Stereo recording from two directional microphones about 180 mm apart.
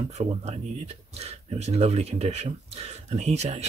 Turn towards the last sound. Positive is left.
turn(degrees=-35)  # may be behind; listen again after turning